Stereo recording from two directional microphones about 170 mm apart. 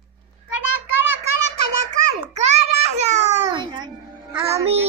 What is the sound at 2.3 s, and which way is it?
Babbling, 40° right (ahead or behind).